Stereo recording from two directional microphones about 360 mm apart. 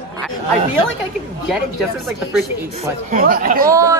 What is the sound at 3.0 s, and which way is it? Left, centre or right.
Speech, right.